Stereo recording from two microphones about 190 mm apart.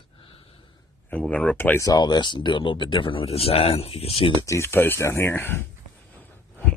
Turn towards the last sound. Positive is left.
turn(degrees=10)  # may be behind; listen again after turning